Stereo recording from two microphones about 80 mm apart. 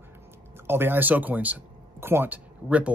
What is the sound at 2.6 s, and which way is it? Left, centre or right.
Speech, centre.